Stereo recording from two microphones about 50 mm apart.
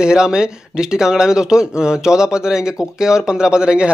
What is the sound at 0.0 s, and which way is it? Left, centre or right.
A man's voice, centre.